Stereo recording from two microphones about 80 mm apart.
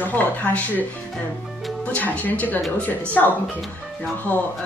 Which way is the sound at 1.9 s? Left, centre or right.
Left.